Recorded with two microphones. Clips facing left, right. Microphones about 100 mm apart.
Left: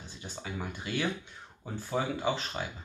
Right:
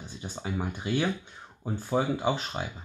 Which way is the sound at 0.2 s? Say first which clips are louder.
Right 5 dB; 25° right (ahead or behind).